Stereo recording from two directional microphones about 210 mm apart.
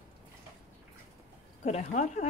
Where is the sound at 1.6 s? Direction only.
35° left (ahead or behind).